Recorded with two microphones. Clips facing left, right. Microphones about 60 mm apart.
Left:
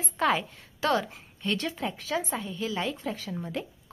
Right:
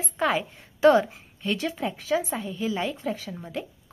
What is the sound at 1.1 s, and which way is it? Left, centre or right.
Speech, centre.